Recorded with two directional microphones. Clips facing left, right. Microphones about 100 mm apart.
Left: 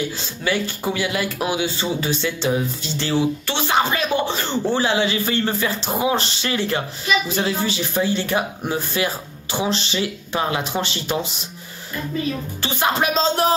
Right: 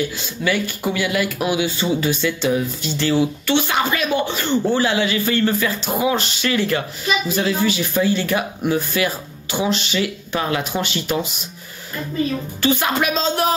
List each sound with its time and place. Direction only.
0.2 s speech: 30° left (ahead or behind)
12.6 s speech: 25° left (ahead or behind)